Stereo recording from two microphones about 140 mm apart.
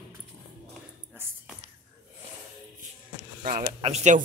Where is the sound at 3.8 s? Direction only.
55° right (ahead or behind).